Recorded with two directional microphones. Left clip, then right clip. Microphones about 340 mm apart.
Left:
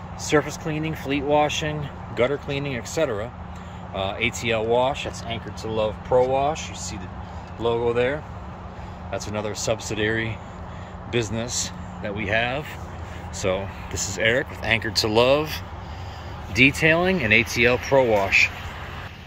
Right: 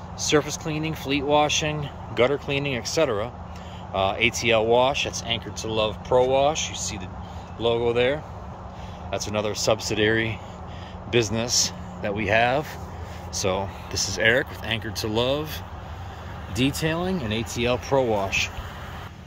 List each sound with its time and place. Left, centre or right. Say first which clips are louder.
0.3 s speech: left 1 dB; centre
7.6 s speech: even; centre
9.3 s speech: right 3 dB; centre
12.0 s speech: right 3 dB; centre
16.9 s speech: left 9 dB; centre